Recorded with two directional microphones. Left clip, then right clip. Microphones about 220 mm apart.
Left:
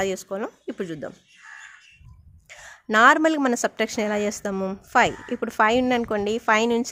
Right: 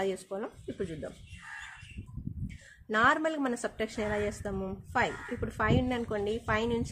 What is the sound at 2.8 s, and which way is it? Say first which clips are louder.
A woman's voice: left 10 dB; 50° left (ahead or behind).